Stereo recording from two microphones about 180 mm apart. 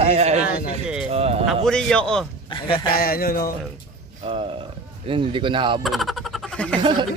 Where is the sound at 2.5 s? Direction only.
25° left (ahead or behind).